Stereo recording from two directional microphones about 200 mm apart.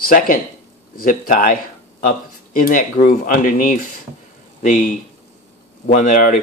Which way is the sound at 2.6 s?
40° left (ahead or behind).